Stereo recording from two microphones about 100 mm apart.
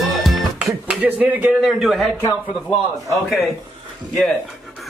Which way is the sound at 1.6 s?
Centre (ahead or behind).